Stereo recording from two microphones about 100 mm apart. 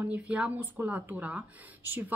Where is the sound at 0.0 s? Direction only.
15° right (ahead or behind).